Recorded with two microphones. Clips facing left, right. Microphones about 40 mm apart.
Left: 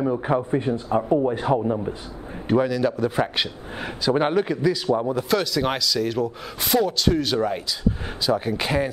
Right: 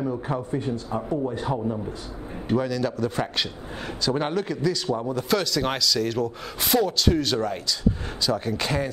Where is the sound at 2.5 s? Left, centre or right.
Centre.